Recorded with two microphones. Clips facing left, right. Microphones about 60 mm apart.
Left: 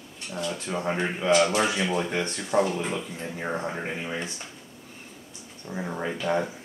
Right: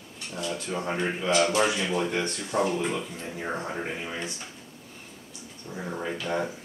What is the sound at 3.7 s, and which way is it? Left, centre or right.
Speech, centre.